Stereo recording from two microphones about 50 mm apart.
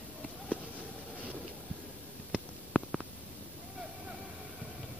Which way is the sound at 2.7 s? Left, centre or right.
Left.